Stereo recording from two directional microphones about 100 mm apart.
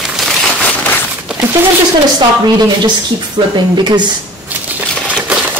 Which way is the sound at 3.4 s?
80° right.